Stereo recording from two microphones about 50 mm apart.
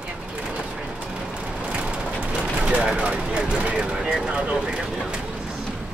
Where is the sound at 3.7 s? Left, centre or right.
Centre.